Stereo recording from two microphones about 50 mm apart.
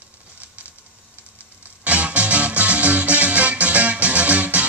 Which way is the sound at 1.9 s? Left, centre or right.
Right.